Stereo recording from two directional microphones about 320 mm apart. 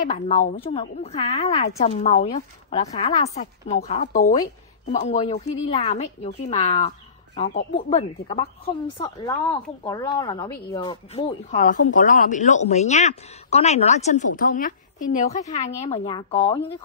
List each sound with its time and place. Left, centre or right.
0.0 s speech: left